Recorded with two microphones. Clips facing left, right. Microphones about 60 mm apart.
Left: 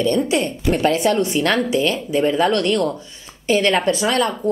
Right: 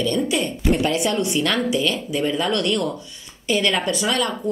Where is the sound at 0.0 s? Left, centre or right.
Left.